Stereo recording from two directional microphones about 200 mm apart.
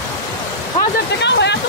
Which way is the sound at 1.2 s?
60° left (ahead or behind).